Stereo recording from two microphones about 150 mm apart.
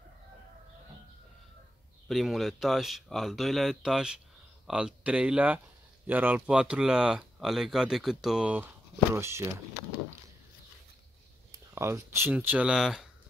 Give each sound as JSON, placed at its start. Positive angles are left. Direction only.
{"t": 2.0, "sound": "speech", "side_deg": 0}
{"t": 9.1, "sound": "speech", "side_deg": -20}
{"t": 11.7, "sound": "speech", "side_deg": -15}